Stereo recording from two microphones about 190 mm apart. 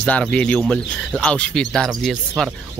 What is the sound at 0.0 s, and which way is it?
Speech, 5° left (ahead or behind).